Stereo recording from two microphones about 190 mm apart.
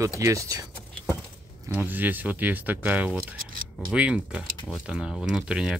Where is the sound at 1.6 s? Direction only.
10° right (ahead or behind).